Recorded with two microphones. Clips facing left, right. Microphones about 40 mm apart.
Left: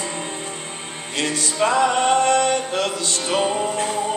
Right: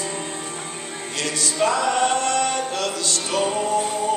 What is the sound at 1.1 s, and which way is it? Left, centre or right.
Music, left.